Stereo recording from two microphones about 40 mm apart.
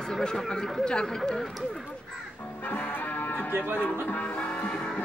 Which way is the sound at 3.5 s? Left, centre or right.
Right.